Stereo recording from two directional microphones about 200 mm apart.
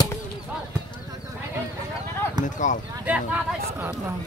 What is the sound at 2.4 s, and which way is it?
Speech, 40° left (ahead or behind).